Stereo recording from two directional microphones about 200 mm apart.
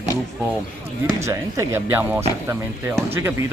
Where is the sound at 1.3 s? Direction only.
15° right (ahead or behind).